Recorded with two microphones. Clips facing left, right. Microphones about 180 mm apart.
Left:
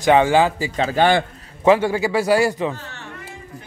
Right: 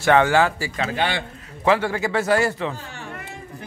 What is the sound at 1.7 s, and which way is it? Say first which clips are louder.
Speech: left 4 dB; 15° left (ahead or behind).